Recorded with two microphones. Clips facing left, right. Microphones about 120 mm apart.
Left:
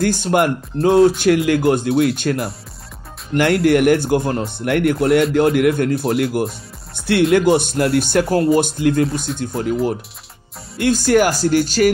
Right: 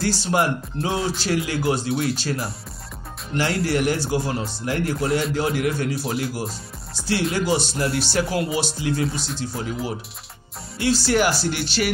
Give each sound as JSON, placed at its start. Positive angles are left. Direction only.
{"t": 0.0, "sound": "speech", "side_deg": 50}
{"t": 10.8, "sound": "speech", "side_deg": 50}